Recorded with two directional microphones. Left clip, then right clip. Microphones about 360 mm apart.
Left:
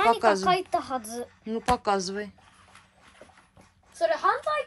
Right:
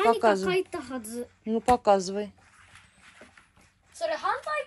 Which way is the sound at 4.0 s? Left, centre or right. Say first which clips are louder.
Left 5 dB; left.